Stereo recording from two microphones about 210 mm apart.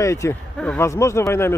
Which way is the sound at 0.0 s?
15° left (ahead or behind).